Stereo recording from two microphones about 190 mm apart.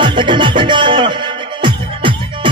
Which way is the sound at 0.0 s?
25° right (ahead or behind).